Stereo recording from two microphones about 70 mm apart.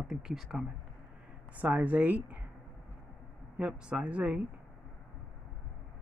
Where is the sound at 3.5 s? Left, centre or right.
Centre.